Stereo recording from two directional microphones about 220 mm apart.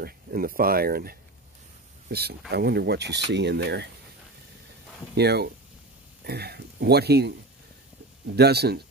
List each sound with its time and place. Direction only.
0.0 s speech: 40° right (ahead or behind)
5.1 s speech: 50° right (ahead or behind)
8.4 s speech: 45° right (ahead or behind)